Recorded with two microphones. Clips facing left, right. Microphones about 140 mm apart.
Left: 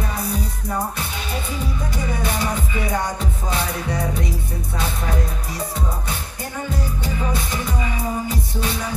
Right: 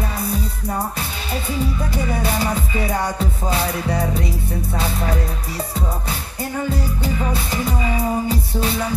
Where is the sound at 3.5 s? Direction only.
35° right (ahead or behind).